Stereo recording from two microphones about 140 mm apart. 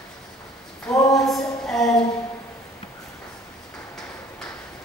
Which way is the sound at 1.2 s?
5° left (ahead or behind).